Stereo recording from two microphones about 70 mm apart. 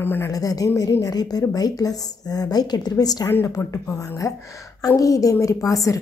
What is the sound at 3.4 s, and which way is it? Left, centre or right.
A woman's voice, left.